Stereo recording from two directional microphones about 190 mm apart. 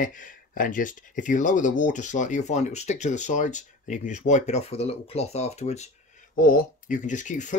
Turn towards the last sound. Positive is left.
turn(degrees=40)  # may be behind; listen again after turning